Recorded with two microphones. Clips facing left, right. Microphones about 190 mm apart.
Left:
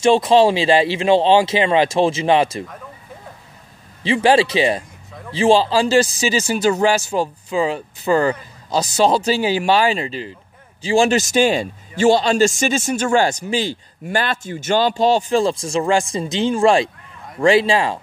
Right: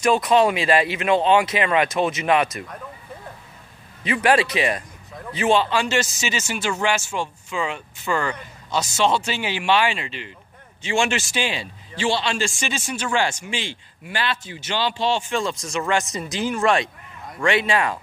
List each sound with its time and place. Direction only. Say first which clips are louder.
0.0 s speech: left 5 dB; 30° left (ahead or behind)
4.0 s speech: left 5 dB; 30° left (ahead or behind)